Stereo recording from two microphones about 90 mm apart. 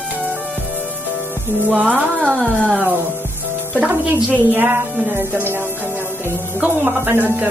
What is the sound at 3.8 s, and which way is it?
A woman's voice, 15° right (ahead or behind).